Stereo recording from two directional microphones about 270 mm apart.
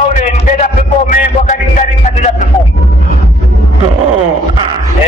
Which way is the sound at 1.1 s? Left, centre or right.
Left.